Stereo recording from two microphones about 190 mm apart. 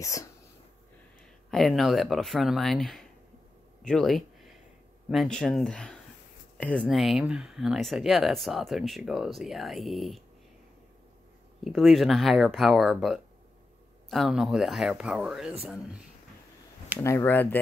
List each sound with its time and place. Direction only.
0.0 s speech: 15° left (ahead or behind)
1.5 s speech: centre (ahead or behind)
11.6 s speech: centre (ahead or behind)
17.0 s speech: 10° left (ahead or behind)